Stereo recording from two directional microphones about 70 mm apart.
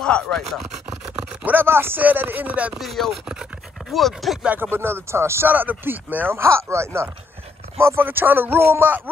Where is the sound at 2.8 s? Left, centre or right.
Centre.